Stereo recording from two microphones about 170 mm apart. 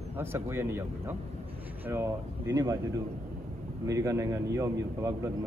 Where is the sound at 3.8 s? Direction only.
20° right (ahead or behind).